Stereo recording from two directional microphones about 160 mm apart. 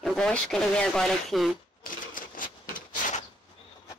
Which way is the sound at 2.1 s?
55° left (ahead or behind).